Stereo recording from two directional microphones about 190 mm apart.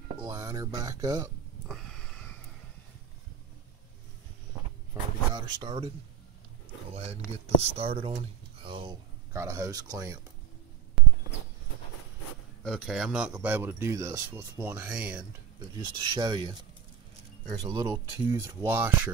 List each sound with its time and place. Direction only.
0.2 s speech: 20° right (ahead or behind)
1.7 s a sound: centre (ahead or behind)
4.9 s a sound: 15° right (ahead or behind)
5.3 s speech: 20° right (ahead or behind)
6.9 s speech: 35° right (ahead or behind)
9.3 s a man's voice: 15° right (ahead or behind)
12.6 s a man's voice: centre (ahead or behind)
15.8 s a man's voice: 25° right (ahead or behind)